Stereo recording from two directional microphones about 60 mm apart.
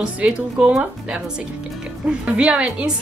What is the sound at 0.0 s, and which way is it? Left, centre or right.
Speech, centre.